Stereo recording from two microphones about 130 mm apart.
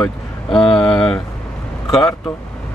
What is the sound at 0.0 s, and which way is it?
Vehicle, 5° left (ahead or behind).